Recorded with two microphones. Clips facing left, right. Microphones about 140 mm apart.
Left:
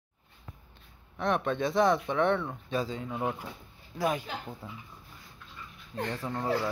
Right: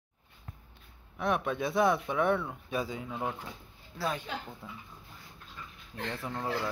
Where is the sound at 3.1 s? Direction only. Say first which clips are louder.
Left 3 dB; 5° left (ahead or behind).